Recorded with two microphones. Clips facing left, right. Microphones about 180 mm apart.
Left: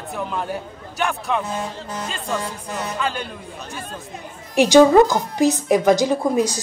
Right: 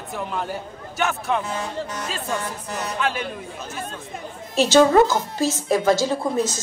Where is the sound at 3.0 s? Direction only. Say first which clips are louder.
Right 1 dB; 5° right (ahead or behind).